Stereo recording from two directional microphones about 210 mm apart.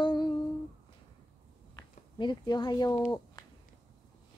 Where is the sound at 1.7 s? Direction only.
20° left (ahead or behind).